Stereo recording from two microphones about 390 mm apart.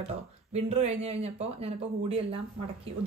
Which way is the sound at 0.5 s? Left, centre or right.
Centre.